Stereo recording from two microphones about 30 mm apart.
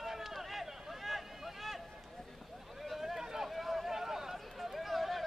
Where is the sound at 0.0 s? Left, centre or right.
Centre.